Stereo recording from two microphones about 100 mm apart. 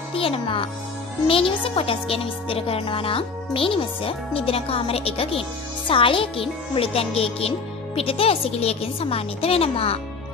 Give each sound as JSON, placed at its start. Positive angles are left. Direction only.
{"t": 0.1, "sound": "a child's voice", "side_deg": 65}
{"t": 5.9, "sound": "a woman's voice", "side_deg": 60}